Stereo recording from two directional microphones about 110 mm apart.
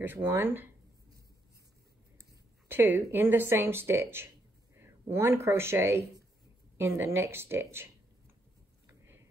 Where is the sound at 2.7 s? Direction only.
20° right (ahead or behind).